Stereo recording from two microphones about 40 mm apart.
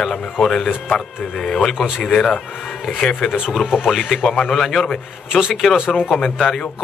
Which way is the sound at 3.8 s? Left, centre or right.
Centre.